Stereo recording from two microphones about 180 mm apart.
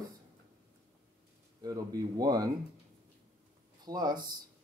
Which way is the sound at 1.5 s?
20° right (ahead or behind).